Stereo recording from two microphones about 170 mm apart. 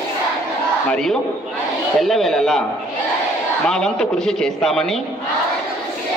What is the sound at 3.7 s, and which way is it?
A man's voice, 5° left (ahead or behind).